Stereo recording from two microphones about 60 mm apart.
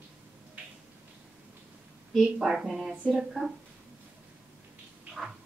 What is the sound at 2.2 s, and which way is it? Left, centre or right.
A woman's voice, centre.